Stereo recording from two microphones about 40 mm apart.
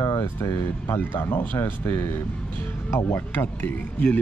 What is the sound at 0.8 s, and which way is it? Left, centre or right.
Speech, left.